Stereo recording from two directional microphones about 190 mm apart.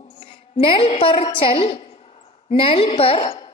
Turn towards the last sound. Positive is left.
turn(degrees=25)  # may be behind; listen again after turning